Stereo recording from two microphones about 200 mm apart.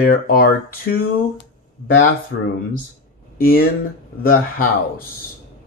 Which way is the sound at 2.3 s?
55° left (ahead or behind).